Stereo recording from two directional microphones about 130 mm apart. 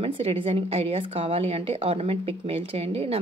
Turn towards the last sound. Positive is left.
turn(degrees=-50)  # may be behind; listen again after turning